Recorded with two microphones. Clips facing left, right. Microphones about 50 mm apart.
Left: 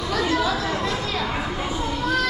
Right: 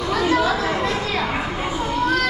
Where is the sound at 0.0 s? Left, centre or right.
Centre.